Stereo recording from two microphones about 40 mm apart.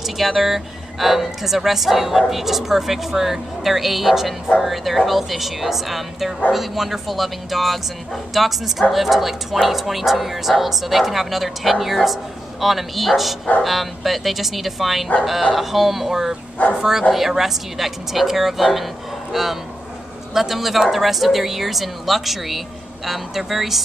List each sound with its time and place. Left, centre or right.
0.0 s speech: centre
16.6 s speech: left
17.1 s speech: centre